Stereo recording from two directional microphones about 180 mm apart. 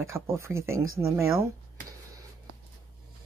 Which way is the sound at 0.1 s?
15° right (ahead or behind).